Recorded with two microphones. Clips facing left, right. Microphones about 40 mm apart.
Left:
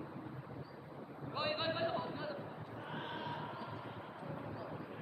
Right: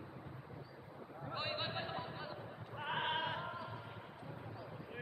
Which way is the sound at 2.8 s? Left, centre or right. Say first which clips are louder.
Right 7 dB; right.